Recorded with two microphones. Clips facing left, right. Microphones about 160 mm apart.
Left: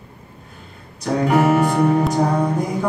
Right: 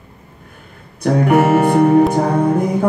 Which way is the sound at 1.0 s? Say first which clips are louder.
Right 4 dB; 55° right (ahead or behind).